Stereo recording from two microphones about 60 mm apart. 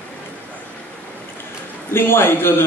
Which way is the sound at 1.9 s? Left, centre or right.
Left.